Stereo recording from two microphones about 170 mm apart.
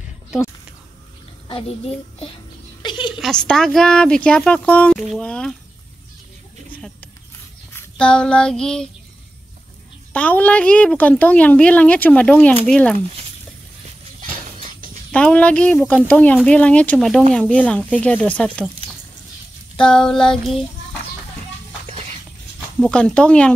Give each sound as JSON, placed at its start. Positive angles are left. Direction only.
{"t": 2.8, "sound": "a sound", "side_deg": 25}
{"t": 3.2, "sound": "speech", "side_deg": 5}
{"t": 7.7, "sound": "child singing", "side_deg": 5}
{"t": 10.1, "sound": "a woman's voice", "side_deg": 10}
{"t": 15.0, "sound": "a woman's voice", "side_deg": 5}
{"t": 19.8, "sound": "speech", "side_deg": 5}
{"t": 22.8, "sound": "speech", "side_deg": 5}